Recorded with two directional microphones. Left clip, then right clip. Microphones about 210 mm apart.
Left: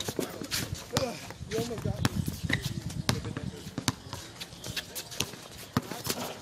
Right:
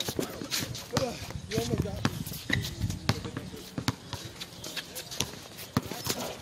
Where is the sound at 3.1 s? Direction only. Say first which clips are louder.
Left 1 dB; 40° left (ahead or behind).